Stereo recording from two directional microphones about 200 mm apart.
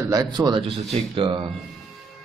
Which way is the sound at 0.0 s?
20° right (ahead or behind).